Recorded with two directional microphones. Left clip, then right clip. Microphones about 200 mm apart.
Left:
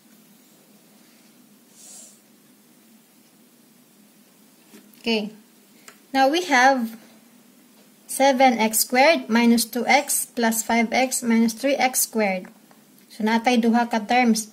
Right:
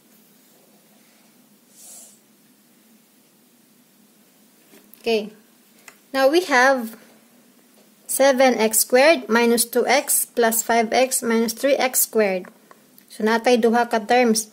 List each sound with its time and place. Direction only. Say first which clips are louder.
6.1 s speech: right 2 dB; 35° right (ahead or behind)
8.2 s speech: right 1 dB; 40° right (ahead or behind)